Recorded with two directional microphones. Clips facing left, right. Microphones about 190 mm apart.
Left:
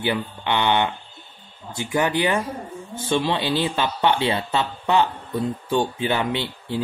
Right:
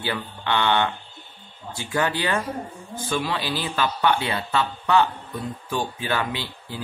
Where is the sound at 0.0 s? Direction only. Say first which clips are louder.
Left 4 dB; 20° left (ahead or behind).